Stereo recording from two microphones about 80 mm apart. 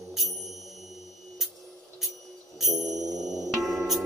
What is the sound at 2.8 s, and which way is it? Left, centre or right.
Music, centre.